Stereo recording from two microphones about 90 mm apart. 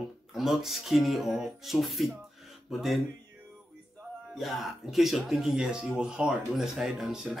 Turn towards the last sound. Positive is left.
turn(degrees=-10)  # may be behind; listen again after turning